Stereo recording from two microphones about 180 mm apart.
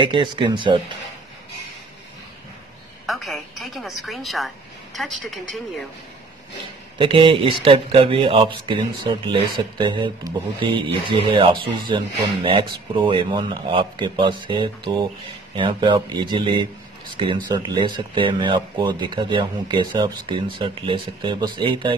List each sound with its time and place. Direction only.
0.0 s speech: 25° right (ahead or behind)
3.1 s a woman's voice: centre (ahead or behind)
7.0 s speech: 30° right (ahead or behind)